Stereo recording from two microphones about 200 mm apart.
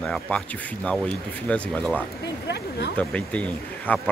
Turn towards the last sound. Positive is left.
turn(degrees=5)  # may be behind; listen again after turning